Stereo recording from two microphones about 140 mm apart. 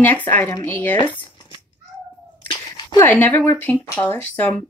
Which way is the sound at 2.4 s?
35° left (ahead or behind).